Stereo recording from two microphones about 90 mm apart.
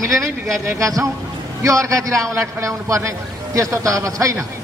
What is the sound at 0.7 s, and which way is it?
A man's voice, 35° right (ahead or behind).